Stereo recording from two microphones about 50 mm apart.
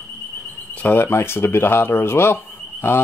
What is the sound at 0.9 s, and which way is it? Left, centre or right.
Speech, left.